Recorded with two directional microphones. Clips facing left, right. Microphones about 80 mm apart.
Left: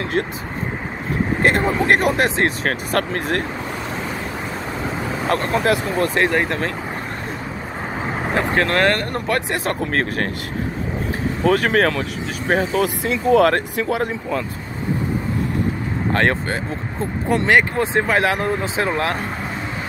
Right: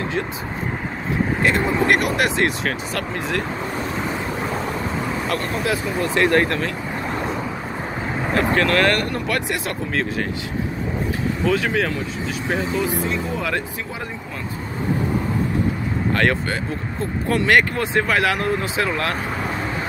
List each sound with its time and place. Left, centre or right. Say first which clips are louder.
0.2 s speech: left 5 dB; left
1.4 s speech: left 2 dB; left
2.7 s speech: left 5 dB; left
5.3 s speech: left 7 dB; left
8.4 s speech: even; left
9.8 s speech: left 2 dB; left
11.4 s speech: left 5 dB; left
12.8 s speech: left 3 dB; left
16.1 s speech: left 1 dB; left